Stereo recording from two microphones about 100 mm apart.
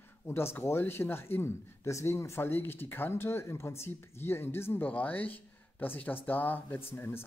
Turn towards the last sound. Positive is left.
turn(degrees=20)  # may be behind; listen again after turning